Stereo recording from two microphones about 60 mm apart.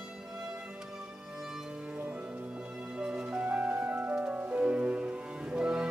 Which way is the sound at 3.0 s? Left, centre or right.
Centre.